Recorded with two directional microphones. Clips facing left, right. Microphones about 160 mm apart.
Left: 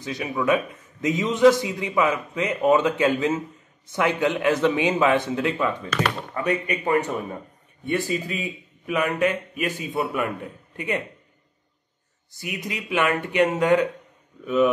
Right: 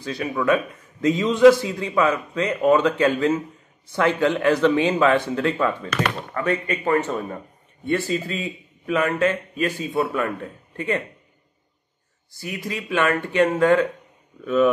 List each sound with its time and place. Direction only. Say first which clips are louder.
0.0 s a man's voice: right 2 dB; 20° left (ahead or behind)
12.4 s a man's voice: right 2 dB; 20° left (ahead or behind)